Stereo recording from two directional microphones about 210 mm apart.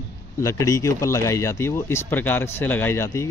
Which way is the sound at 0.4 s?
15° left (ahead or behind).